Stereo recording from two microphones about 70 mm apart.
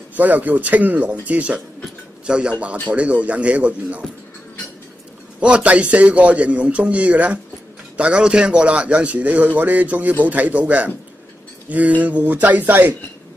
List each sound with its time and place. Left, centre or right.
0.2 s a man's voice: right
5.4 s a man's voice: centre
12.0 s a man's voice: right